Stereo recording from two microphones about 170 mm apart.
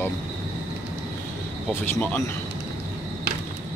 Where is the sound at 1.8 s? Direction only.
10° left (ahead or behind).